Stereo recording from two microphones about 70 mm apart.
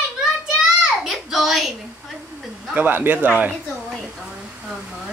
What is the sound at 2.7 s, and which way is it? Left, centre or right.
Speech, right.